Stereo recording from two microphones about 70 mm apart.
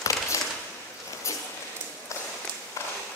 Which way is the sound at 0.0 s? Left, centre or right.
Left.